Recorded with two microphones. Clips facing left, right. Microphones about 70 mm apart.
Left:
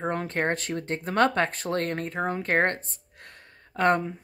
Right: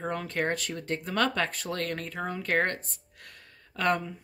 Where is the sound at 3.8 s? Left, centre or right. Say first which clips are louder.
Left 5 dB; left.